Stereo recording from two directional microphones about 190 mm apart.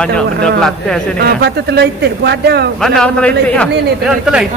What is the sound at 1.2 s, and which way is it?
A man's voice, 60° right (ahead or behind).